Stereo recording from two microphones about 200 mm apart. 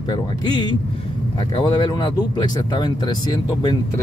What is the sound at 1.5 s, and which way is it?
Speech, 20° left (ahead or behind).